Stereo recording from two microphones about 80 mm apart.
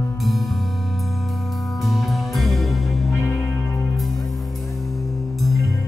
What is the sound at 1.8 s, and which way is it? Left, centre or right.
Music, centre.